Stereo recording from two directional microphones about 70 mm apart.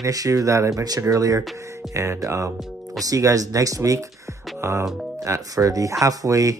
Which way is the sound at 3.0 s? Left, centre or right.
Right.